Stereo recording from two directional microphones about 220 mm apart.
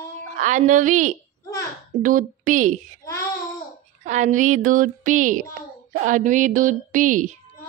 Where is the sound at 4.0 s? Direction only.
35° right (ahead or behind).